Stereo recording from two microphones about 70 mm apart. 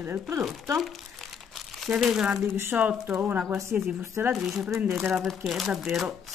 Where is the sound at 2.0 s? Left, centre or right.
Centre.